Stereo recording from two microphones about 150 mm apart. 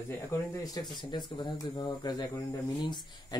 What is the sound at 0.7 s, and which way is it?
Speech, 30° left (ahead or behind).